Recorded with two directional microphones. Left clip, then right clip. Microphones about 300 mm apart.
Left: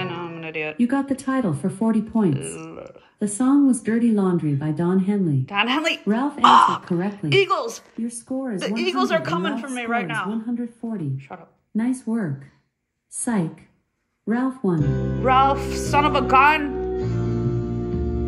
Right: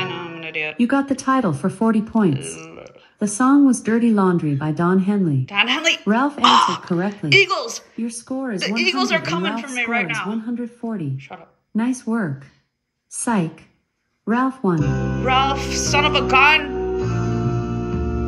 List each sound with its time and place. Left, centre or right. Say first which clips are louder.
0.0 s music: right 3 dB; centre
0.7 s speech: right 4 dB; right
2.3 s speech: even; centre
3.2 s speech: right 4 dB; right
5.4 s speech: right 3 dB; centre
6.0 s speech: right 5 dB; right
6.4 s speech: left 2 dB; centre
8.0 s speech: right 2 dB; centre
8.5 s speech: right 3 dB; centre
10.8 s speech: right 3 dB; centre
11.1 s speech: right 1 dB; centre
11.7 s speech: right 2 dB; centre
15.2 s speech: left 1 dB; centre
17.3 s music: right 2 dB; right